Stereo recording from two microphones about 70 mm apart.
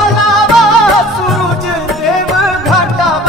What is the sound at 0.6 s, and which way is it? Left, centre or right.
Music, centre.